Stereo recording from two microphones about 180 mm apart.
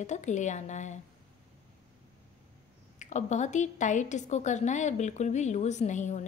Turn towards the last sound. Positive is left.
turn(degrees=40)  # may be behind; listen again after turning